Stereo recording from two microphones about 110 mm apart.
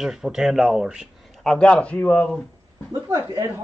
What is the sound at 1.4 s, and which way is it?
Speech, 10° left (ahead or behind).